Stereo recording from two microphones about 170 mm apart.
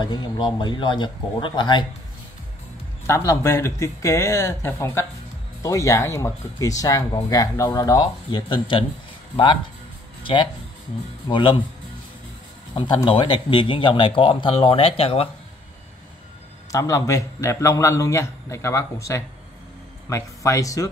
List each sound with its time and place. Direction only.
0.0 s speech: 25° left (ahead or behind)
3.1 s a man's voice: 15° left (ahead or behind)
10.2 s speech: 30° left (ahead or behind)
12.7 s speech: 30° left (ahead or behind)
16.7 s a man's voice: 20° left (ahead or behind)